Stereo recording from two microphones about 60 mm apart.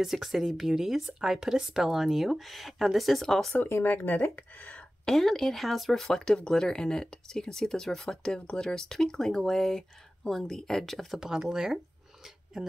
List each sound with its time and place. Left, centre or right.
0.0 s speech: centre
3.6 s speech: left
4.7 s speech: centre
11.1 s speech: centre